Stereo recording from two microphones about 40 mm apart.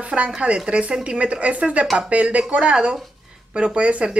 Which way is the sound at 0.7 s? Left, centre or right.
Right.